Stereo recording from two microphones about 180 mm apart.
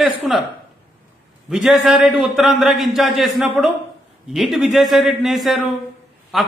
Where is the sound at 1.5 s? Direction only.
Centre (ahead or behind).